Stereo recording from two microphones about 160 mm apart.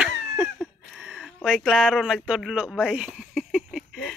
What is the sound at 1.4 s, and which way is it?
Speech, 5° right (ahead or behind).